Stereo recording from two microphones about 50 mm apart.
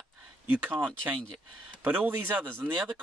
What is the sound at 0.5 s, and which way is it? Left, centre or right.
Speech, right.